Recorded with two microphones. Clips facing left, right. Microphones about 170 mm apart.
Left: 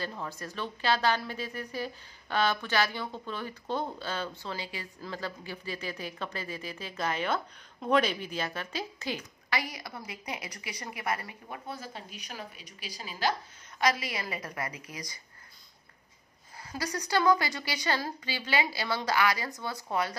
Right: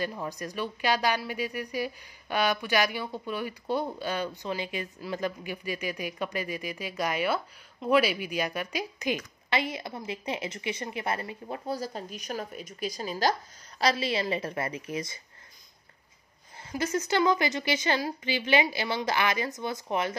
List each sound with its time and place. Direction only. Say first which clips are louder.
0.0 s a woman's voice: right 4 dB; 15° right (ahead or behind); by 13.3 s 40° right (ahead or behind)
13.7 s a woman's voice: right 3 dB; 30° right (ahead or behind)
16.7 s a woman's voice: right 3 dB; 25° right (ahead or behind)